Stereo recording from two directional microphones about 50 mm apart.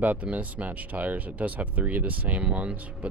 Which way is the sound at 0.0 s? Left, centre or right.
Right.